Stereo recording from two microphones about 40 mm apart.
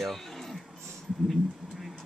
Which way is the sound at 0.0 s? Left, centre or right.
Centre.